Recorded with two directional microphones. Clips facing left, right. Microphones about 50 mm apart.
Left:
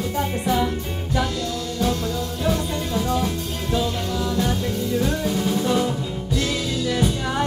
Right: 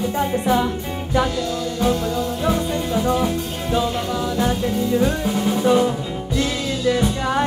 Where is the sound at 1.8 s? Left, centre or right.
Right.